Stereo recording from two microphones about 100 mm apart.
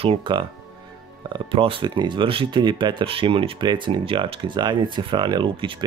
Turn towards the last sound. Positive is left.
turn(degrees=-60)  # may be behind; listen again after turning